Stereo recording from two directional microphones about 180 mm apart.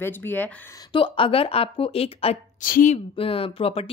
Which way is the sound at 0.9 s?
30° left (ahead or behind).